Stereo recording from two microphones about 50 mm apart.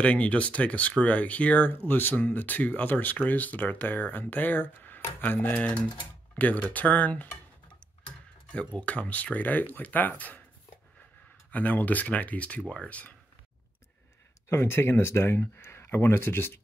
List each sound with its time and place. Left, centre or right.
0.0 s speech: left
8.5 s speech: left
11.5 s speech: left
14.5 s speech: left